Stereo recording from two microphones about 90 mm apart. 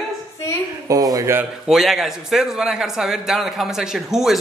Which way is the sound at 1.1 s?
35° right (ahead or behind).